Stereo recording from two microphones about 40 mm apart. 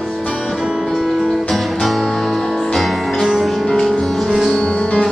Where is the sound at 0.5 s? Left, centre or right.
Centre.